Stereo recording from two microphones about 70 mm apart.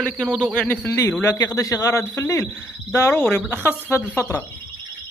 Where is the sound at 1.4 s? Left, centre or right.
Left.